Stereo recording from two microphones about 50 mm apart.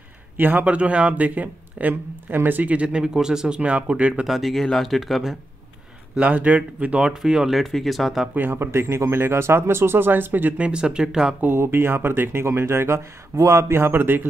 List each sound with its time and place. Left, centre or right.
0.4 s speech: right
0.7 s speech: right
3.0 s speech: centre
4.3 s speech: centre
6.1 s speech: right
7.1 s speech: centre
7.5 s speech: centre
8.4 s speech: right
8.7 s speech: right
10.6 s speech: centre
11.4 s speech: right